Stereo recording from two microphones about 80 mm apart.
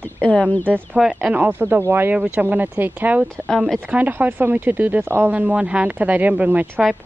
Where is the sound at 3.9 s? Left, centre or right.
Right.